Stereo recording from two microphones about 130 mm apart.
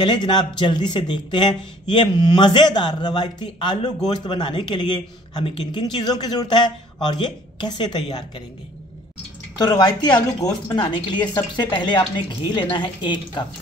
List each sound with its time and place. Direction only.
0.0 s speech: 35° left (ahead or behind)
9.6 s speech: 30° left (ahead or behind)